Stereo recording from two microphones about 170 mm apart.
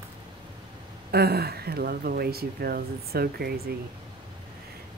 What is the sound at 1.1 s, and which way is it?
Speech, 70° right (ahead or behind).